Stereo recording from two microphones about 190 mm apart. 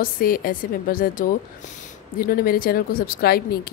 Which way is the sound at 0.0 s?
50° left (ahead or behind).